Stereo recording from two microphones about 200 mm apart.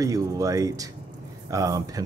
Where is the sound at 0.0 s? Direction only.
15° right (ahead or behind).